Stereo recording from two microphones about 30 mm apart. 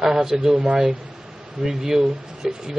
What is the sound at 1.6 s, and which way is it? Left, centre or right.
Speech, centre.